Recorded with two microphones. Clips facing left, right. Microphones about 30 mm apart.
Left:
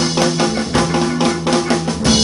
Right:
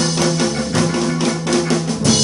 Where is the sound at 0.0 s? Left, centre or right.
Centre.